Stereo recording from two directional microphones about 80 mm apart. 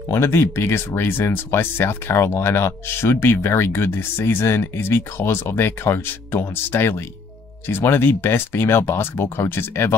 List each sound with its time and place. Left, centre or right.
0.1 s speech: left